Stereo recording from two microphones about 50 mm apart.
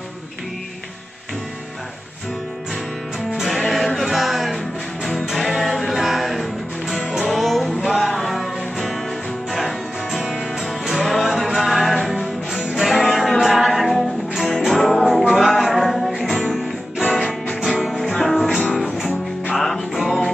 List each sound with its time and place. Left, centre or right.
3.3 s music: centre
12.5 s music: centre
12.9 s music: centre